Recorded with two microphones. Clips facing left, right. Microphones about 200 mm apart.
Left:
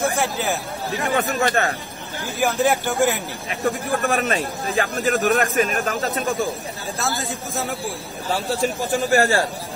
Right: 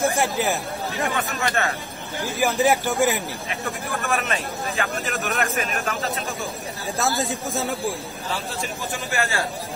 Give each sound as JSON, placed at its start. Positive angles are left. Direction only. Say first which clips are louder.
{"t": 0.2, "sound": "speech", "louder": "even", "side_deg": 0}
{"t": 1.1, "sound": "a man's voice", "louder": "left 5 dB", "side_deg": 35}
{"t": 2.3, "sound": "speech", "louder": "left 1 dB", "side_deg": 0}
{"t": 3.6, "sound": "a man's voice", "louder": "left 8 dB", "side_deg": 35}
{"t": 8.3, "sound": "a man's voice", "louder": "left 8 dB", "side_deg": 35}